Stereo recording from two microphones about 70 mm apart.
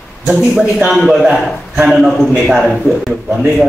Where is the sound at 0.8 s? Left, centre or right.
Centre.